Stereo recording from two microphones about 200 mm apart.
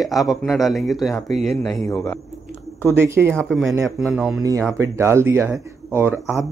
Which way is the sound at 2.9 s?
10° right (ahead or behind).